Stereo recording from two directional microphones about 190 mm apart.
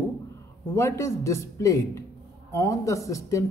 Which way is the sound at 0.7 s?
15° left (ahead or behind).